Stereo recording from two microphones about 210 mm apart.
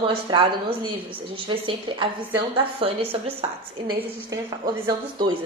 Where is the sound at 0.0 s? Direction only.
25° right (ahead or behind).